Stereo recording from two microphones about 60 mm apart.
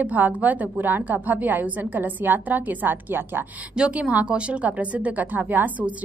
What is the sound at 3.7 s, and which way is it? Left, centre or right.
A woman's voice, centre.